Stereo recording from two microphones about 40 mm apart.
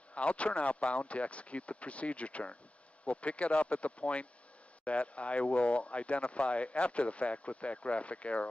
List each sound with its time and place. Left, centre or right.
0.1 s speech: left